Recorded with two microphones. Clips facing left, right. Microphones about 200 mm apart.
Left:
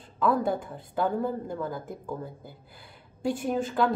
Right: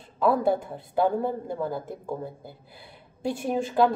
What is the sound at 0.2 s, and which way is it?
Speech, 5° right (ahead or behind).